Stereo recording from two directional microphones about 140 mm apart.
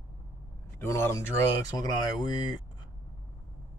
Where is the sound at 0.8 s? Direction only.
15° left (ahead or behind).